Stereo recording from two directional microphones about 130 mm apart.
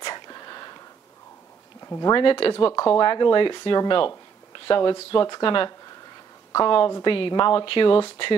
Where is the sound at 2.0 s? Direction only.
35° left (ahead or behind).